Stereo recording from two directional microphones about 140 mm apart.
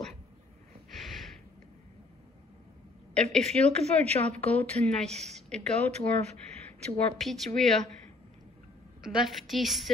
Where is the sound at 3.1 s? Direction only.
5° left (ahead or behind).